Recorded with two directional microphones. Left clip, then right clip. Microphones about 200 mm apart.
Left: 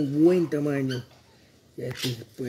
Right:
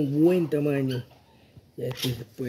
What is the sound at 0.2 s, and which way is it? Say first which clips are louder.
Speech: left 1 dB; 10° right (ahead or behind).